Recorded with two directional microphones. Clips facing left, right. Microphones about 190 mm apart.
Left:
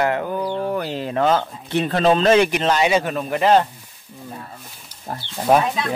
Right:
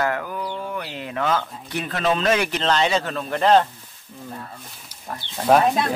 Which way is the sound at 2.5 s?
10° left (ahead or behind).